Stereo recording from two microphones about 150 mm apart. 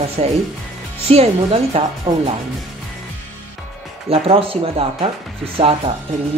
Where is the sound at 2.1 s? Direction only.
30° right (ahead or behind).